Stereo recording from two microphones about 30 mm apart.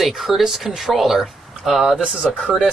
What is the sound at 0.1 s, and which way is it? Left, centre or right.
Speech, centre.